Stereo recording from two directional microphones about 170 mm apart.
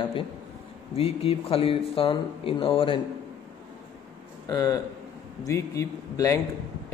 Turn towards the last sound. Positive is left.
turn(degrees=20)  # may be behind; listen again after turning